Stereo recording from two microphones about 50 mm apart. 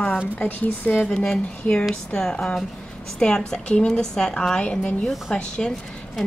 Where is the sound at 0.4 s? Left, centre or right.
Left.